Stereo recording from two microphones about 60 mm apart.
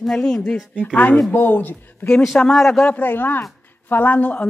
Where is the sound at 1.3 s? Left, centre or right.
Left.